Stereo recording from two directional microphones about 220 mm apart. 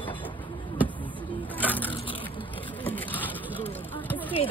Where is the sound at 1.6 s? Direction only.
10° left (ahead or behind).